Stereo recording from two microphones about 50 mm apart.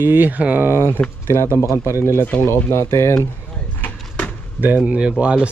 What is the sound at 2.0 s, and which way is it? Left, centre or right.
Speech, left.